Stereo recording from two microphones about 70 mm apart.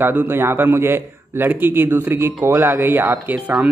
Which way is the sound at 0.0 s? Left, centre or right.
Right.